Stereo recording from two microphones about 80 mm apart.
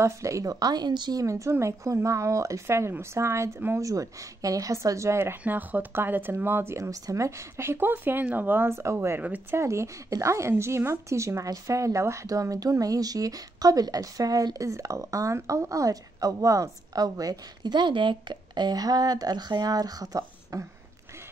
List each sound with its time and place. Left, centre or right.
0.0 s speech: right
1.2 s speech: right
5.4 s speech: right
17.7 s speech: right